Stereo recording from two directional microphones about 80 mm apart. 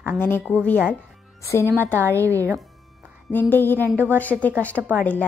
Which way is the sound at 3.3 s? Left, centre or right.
Left.